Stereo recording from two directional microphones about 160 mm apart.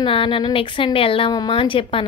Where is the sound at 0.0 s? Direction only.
30° left (ahead or behind).